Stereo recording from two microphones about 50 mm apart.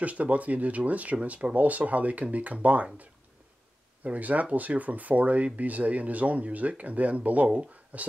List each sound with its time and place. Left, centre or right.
0.0 s speech: right